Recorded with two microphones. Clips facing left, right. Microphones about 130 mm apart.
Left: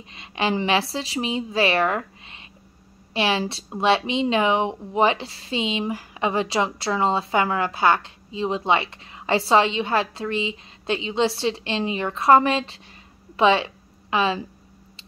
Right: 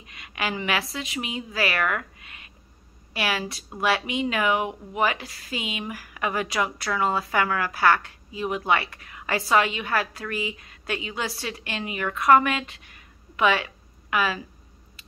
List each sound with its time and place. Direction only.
0.0 s a woman's voice: 25° left (ahead or behind)